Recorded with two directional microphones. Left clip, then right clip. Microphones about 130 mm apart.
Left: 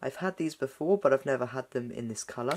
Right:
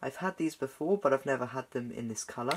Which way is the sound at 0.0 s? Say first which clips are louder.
Left 1 dB; 20° left (ahead or behind).